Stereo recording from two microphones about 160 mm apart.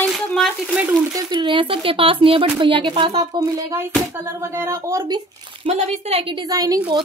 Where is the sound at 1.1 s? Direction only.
30° right (ahead or behind).